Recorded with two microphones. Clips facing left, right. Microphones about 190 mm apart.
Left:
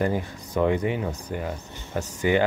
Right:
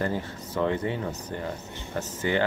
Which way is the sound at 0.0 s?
15° left (ahead or behind).